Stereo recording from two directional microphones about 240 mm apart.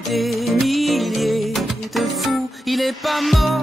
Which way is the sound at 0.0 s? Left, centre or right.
Centre.